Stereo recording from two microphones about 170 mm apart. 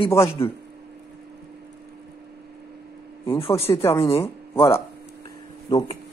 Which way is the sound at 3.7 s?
15° left (ahead or behind).